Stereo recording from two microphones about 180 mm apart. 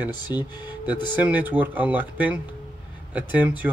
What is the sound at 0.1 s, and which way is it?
Speech, 25° left (ahead or behind).